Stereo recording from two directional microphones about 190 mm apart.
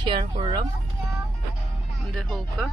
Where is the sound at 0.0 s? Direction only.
25° right (ahead or behind).